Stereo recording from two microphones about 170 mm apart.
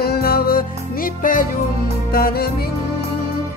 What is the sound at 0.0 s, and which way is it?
Music, 65° left (ahead or behind).